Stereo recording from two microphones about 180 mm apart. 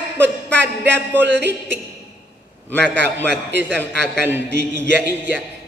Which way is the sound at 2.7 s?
5° left (ahead or behind).